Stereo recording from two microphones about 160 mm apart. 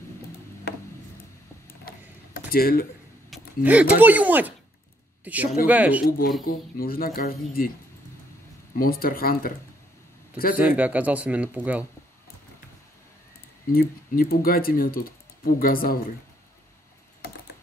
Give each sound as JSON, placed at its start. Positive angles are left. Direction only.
{"t": 2.5, "sound": "speech", "side_deg": 70}
{"t": 3.6, "sound": "speech", "side_deg": -10}
{"t": 6.0, "sound": "speech", "side_deg": 65}
{"t": 8.7, "sound": "speech", "side_deg": 65}
{"t": 10.8, "sound": "speech", "side_deg": -10}
{"t": 13.7, "sound": "speech", "side_deg": 70}